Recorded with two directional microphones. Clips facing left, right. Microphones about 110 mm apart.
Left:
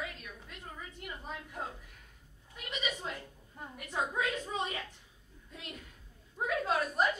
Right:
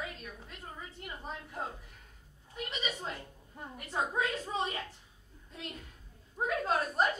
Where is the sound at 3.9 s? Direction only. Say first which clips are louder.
Right 1 dB; 30° right (ahead or behind).